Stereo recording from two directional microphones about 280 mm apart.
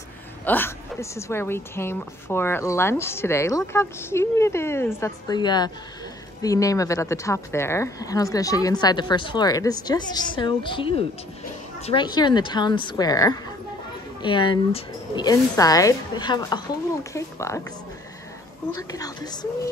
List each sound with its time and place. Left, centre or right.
0.5 s a woman's voice: centre
18.8 s a woman's voice: centre